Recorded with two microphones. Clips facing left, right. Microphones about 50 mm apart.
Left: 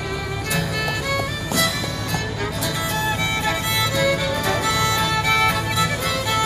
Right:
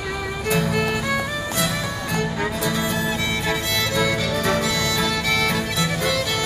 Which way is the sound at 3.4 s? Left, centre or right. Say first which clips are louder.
Left 1 dB; centre.